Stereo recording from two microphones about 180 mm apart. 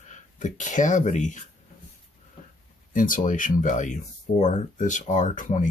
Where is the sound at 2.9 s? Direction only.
50° left (ahead or behind).